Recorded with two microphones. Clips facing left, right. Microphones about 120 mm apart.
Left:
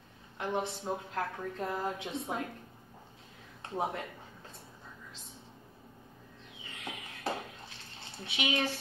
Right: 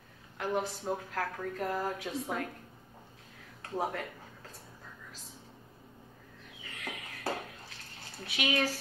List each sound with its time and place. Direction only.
0.4 s a woman's voice: 25° left (ahead or behind)
3.6 s speech: 20° left (ahead or behind)
6.6 s a sound: 25° left (ahead or behind)
8.2 s a woman's voice: 25° left (ahead or behind)